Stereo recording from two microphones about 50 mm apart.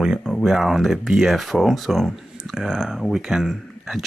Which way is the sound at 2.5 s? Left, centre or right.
Centre.